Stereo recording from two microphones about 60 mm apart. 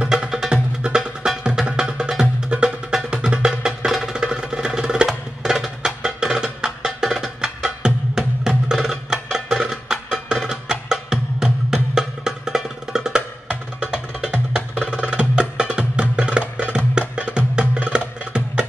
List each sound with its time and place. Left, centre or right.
0.1 s music: centre